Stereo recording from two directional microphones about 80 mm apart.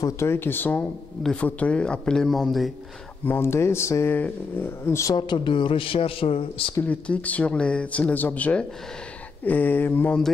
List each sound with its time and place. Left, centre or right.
0.0 s speech: left
1.2 s speech: centre
3.3 s speech: left
4.1 s speech: left
5.1 s speech: left
6.8 s speech: centre